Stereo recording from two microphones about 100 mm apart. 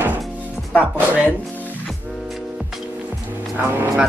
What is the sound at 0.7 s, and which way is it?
Speech, 15° right (ahead or behind).